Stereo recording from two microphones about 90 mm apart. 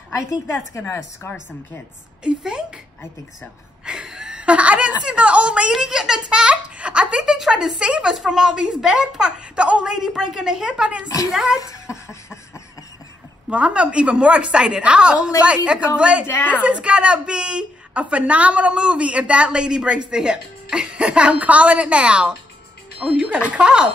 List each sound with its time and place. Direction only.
0.1 s a woman's voice: 30° left (ahead or behind)
2.2 s a woman's voice: 10° right (ahead or behind)
3.8 s a woman's voice: 10° right (ahead or behind)
11.6 s a sound: 35° left (ahead or behind)
13.5 s a woman's voice: 15° right (ahead or behind)
16.3 s a woman's voice: 20° left (ahead or behind)
16.6 s a woman's voice: 15° right (ahead or behind)